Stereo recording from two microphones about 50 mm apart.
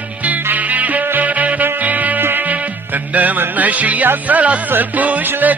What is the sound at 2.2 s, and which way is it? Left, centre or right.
Music, right.